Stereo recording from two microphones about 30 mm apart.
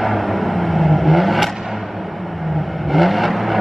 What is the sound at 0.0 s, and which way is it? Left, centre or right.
Vehicle, centre.